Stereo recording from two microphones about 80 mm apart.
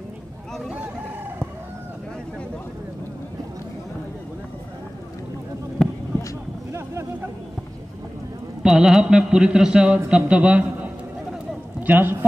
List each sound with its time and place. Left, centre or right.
5.8 s heart sounds: centre
6.7 s a sound: right
8.6 s a man's voice: centre; by 12.3 s right